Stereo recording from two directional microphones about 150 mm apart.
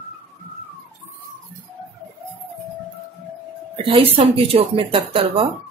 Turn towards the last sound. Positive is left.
turn(degrees=-35)  # may be behind; listen again after turning